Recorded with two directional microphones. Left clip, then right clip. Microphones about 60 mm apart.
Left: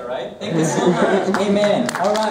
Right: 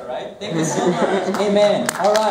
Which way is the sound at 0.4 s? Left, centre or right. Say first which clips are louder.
Left 2 dB; right.